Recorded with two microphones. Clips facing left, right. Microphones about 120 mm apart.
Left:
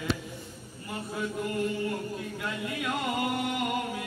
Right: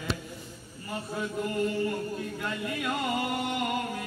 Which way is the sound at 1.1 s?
Centre (ahead or behind).